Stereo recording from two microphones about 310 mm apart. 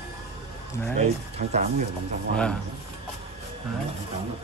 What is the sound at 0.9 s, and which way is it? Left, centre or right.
Speech, right.